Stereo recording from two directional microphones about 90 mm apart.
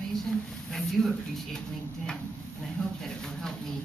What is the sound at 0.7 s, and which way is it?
Speech, centre (ahead or behind).